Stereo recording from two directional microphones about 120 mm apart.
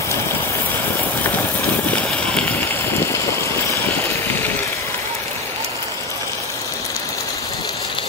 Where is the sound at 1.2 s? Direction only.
15° left (ahead or behind).